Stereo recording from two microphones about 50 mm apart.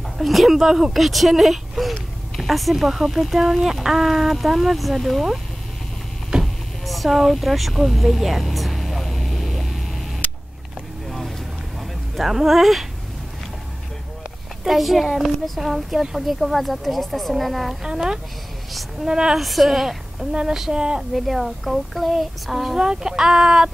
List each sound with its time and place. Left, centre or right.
0.2 s speech: centre
6.4 s a sound: centre
11.1 s vehicle: centre
12.2 s speech: centre
14.6 s speech: centre
17.8 s speech: centre
18.7 s a sound: centre
19.0 s speech: centre
19.3 s speech: centre
21.1 s speech: centre